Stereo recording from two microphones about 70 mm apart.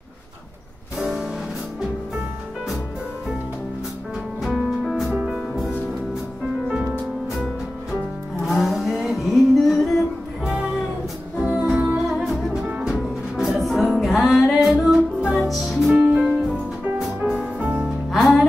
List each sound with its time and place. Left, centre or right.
0.9 s music: centre
4.4 s music: centre
5.1 s music: centre
7.3 s music: centre
10.4 s music: centre
12.1 s music: centre
12.6 s music: centre
16.0 s music: centre
17.6 s music: centre
17.8 s music: centre